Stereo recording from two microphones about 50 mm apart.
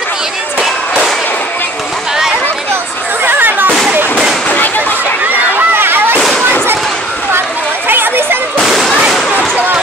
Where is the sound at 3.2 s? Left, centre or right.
Right.